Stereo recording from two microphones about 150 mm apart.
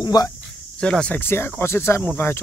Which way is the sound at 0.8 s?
5° left (ahead or behind).